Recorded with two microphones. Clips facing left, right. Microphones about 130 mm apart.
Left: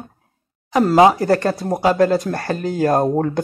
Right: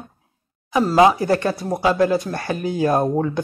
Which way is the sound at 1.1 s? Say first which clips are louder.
Left 2 dB; 45° left (ahead or behind).